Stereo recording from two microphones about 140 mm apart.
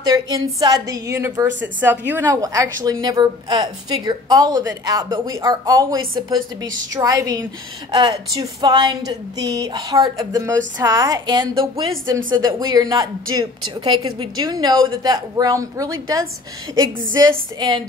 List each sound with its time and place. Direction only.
0.0 s a woman's voice: 25° right (ahead or behind)